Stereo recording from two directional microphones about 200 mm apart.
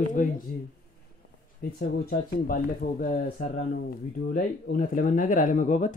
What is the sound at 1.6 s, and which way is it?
Speech, 45° left (ahead or behind).